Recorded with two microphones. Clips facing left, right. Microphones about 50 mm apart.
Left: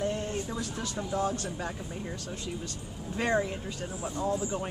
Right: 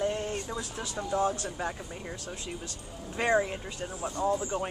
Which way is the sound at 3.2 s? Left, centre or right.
Centre.